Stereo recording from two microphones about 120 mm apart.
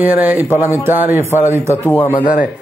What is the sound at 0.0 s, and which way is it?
A man's voice, 15° right (ahead or behind).